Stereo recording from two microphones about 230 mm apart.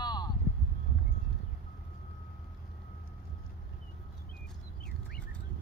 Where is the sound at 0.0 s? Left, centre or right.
Centre.